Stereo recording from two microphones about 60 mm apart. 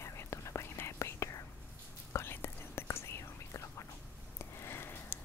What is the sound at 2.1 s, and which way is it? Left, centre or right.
Whispering, left.